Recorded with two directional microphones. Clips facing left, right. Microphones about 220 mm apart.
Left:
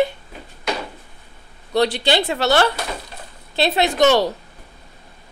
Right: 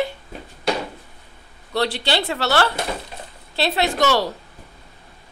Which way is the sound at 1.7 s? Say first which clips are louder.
Left 4 dB; 15° left (ahead or behind).